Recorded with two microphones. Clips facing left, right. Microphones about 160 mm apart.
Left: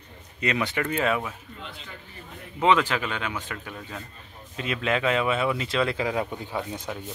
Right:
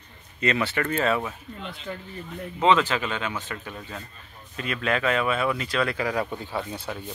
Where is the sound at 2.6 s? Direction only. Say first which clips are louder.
Right 1 dB; 10° left (ahead or behind).